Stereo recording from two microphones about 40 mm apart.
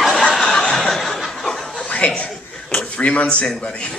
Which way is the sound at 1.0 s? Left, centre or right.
Centre.